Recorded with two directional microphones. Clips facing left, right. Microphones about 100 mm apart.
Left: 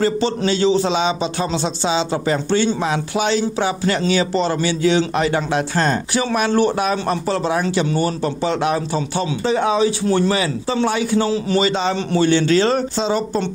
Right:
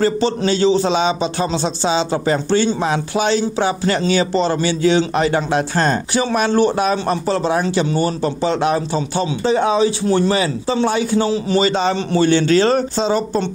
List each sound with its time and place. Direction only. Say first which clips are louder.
0.0 s a man's voice: right 2 dB; 35° right (ahead or behind)
11.7 s a man's voice: right 2 dB; 40° right (ahead or behind)